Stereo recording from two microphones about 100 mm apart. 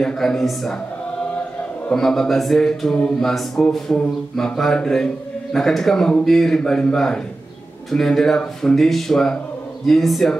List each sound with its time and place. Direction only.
0.0 s mantra: 5° left (ahead or behind)
1.9 s mantra: 5° left (ahead or behind)